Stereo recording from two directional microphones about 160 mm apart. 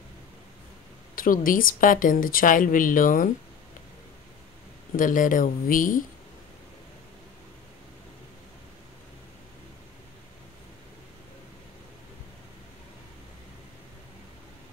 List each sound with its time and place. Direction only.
1.1 s speech: 60° left (ahead or behind)
4.9 s speech: 55° left (ahead or behind)